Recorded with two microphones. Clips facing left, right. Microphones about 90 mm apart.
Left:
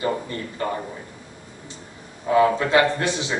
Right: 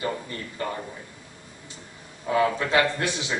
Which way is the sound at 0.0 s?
30° left (ahead or behind).